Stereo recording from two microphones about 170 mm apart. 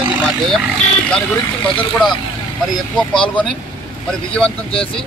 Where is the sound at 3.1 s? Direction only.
5° left (ahead or behind).